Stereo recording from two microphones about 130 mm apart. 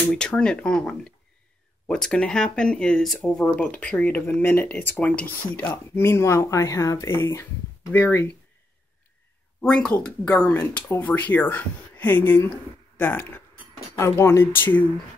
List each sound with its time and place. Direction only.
0.1 s speech: 5° left (ahead or behind)
9.6 s speech: 10° left (ahead or behind)